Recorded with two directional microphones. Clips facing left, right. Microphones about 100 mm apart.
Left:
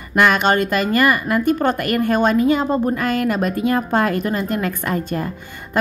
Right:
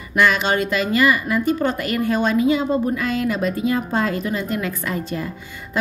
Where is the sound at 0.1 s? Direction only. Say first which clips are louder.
Left 3 dB; 55° left (ahead or behind).